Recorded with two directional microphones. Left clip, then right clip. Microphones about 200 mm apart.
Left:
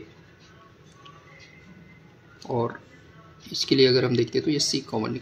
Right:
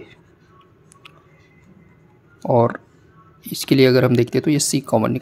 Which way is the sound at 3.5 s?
50° right (ahead or behind).